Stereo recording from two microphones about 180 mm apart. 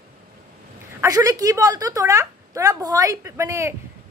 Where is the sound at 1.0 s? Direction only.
20° right (ahead or behind).